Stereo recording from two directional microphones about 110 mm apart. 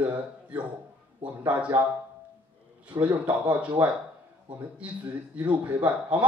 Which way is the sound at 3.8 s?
15° right (ahead or behind).